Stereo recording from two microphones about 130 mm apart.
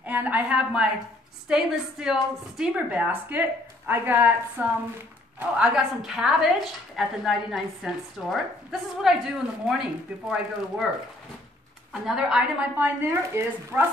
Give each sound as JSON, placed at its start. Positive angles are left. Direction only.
{"t": 0.0, "sound": "a woman's voice", "side_deg": -15}
{"t": 11.9, "sound": "a woman's voice", "side_deg": -5}